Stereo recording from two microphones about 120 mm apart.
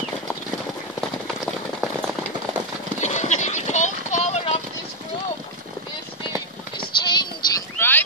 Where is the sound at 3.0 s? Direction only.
75° left (ahead or behind).